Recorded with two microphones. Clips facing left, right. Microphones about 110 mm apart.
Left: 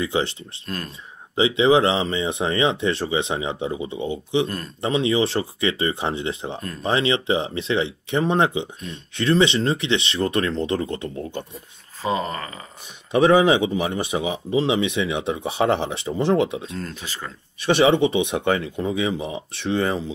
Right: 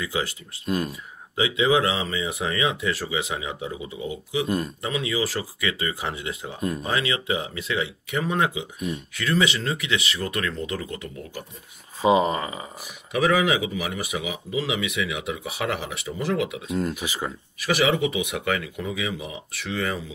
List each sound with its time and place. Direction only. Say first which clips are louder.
0.0 s speech: left 5 dB; 30° left (ahead or behind)
0.7 s speech: right 6 dB; 10° right (ahead or behind)
1.3 s speech: left 4 dB; 30° left (ahead or behind)
12.0 s speech: right 5 dB; 15° right (ahead or behind)
13.1 s speech: left 6 dB; 30° left (ahead or behind)
16.7 s speech: right 5 dB; 15° right (ahead or behind)
17.6 s speech: left 5 dB; 30° left (ahead or behind)